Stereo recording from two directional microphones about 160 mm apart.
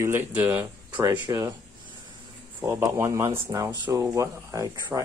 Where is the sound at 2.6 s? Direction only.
15° right (ahead or behind).